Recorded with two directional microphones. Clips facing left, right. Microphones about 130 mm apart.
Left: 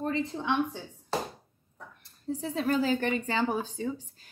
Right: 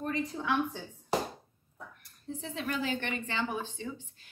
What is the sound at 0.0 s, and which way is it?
Speech, 30° left (ahead or behind).